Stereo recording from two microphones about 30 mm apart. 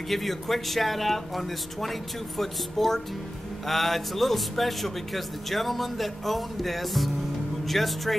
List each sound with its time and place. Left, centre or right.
0.1 s a man's voice: centre